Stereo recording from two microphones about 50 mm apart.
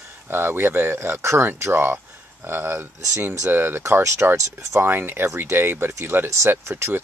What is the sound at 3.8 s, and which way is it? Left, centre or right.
Speech, right.